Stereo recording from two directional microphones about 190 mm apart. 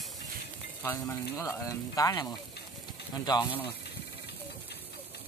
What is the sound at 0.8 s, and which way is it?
Speech, 15° left (ahead or behind).